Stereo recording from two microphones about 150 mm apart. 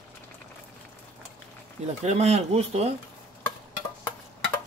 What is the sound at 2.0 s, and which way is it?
Speech, 45° right (ahead or behind).